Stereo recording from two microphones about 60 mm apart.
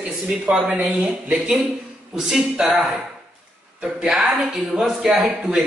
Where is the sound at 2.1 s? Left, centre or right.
Centre.